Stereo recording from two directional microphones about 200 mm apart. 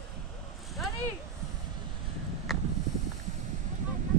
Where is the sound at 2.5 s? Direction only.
Centre (ahead or behind).